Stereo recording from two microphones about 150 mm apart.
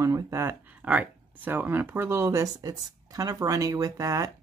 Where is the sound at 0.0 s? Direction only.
20° right (ahead or behind).